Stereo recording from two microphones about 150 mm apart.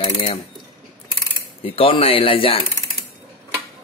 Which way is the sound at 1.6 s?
40° left (ahead or behind).